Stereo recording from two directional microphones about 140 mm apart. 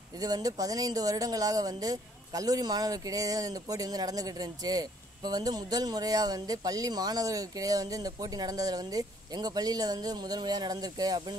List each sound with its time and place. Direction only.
0.2 s speech: 25° right (ahead or behind)